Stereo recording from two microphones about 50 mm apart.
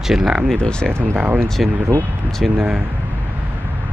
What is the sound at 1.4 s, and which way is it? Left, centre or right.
Speech, centre.